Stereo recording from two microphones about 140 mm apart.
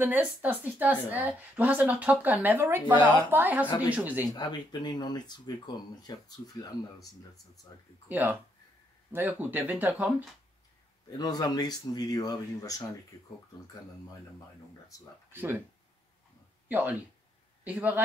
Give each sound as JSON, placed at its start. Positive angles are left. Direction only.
{"t": 0.0, "sound": "a woman's voice", "side_deg": -15}
{"t": 4.2, "sound": "speech", "side_deg": 30}
{"t": 8.1, "sound": "a woman's voice", "side_deg": -10}
{"t": 11.1, "sound": "speech", "side_deg": 30}
{"t": 15.3, "sound": "a woman's voice", "side_deg": -15}
{"t": 16.6, "sound": "a woman's voice", "side_deg": -10}